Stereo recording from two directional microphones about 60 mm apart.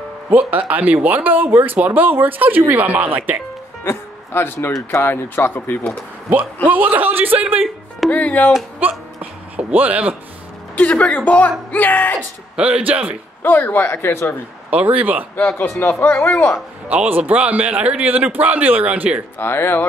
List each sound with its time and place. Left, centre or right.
0.3 s a man's voice: right
3.8 s speech: left
6.3 s speech: right
8.1 s a woman's voice: left
8.7 s a sound: right
10.8 s a woman's voice: left
12.2 s a man's voice: centre
13.4 s speech: left
14.7 s a man's voice: right
15.8 s speech: left
16.9 s a man's voice: right
19.3 s speech: left